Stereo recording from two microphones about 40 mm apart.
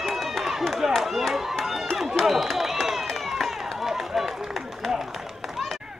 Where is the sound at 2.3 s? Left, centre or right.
Centre.